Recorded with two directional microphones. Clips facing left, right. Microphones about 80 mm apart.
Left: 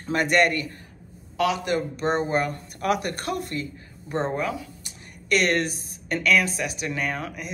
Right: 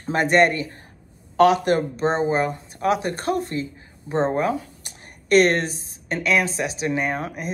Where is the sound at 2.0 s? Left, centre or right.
Right.